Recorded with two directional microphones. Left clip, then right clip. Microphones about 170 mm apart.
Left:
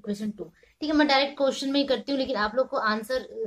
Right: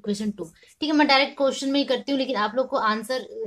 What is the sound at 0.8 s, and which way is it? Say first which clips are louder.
A woman's voice: right 3 dB; 35° right (ahead or behind).